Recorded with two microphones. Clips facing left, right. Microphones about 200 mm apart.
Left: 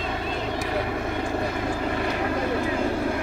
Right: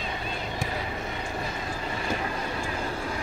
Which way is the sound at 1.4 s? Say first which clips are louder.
Left 7 dB; 60° left (ahead or behind).